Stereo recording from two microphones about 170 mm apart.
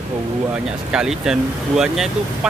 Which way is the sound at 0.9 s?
5° right (ahead or behind).